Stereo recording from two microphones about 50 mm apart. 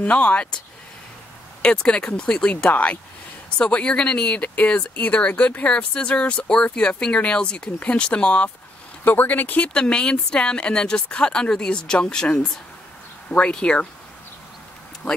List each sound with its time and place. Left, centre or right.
0.0 s speech: left
1.6 s speech: centre
9.0 s speech: left
9.6 s speech: centre